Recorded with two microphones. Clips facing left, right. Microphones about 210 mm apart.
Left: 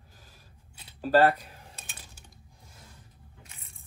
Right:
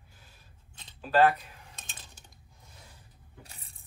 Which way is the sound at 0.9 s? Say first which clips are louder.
Left 3 dB; 40° left (ahead or behind).